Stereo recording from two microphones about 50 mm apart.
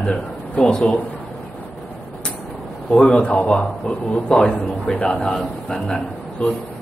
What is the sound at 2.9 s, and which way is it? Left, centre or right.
A man's voice, centre.